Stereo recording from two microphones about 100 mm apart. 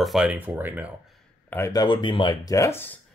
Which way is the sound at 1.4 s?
25° left (ahead or behind).